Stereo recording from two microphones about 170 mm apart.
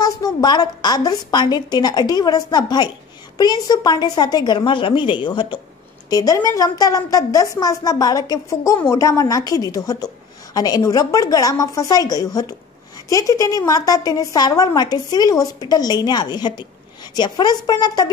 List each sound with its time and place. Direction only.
0.0 s a woman's voice: 25° left (ahead or behind)